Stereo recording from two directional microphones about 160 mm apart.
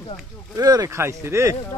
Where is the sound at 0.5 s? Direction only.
20° right (ahead or behind).